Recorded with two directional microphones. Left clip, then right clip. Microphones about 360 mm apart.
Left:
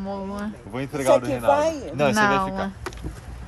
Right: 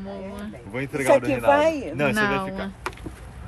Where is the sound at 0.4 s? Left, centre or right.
Centre.